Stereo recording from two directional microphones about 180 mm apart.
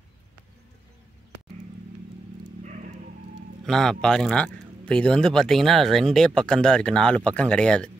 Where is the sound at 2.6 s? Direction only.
40° right (ahead or behind).